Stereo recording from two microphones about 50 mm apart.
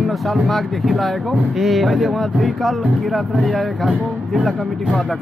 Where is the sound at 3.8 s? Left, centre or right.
Centre.